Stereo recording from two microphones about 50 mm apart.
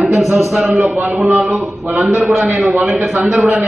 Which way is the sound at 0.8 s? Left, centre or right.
Right.